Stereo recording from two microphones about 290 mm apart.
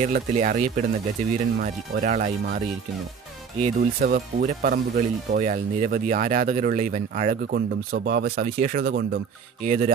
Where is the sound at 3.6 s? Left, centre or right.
Right.